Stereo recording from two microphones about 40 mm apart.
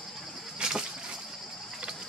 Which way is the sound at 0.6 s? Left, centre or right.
Centre.